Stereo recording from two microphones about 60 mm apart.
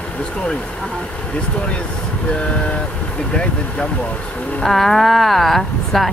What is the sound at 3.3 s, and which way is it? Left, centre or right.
Speech, centre.